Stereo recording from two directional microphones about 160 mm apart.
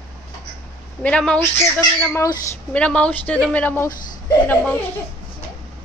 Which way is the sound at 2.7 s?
5° left (ahead or behind).